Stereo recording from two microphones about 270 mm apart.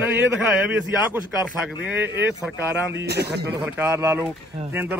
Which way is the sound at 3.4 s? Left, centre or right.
Centre.